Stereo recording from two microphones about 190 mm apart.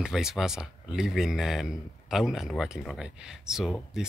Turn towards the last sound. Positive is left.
turn(degrees=0)  # may be behind; listen again after turning